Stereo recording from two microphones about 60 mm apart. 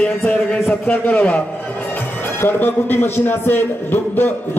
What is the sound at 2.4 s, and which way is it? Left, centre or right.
Speech, left.